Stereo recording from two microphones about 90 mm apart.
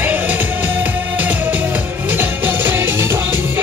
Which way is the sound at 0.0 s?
20° right (ahead or behind).